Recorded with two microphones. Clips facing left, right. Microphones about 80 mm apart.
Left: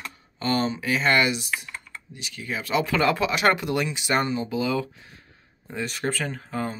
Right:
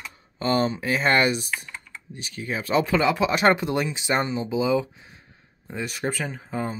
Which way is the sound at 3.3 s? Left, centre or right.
Right.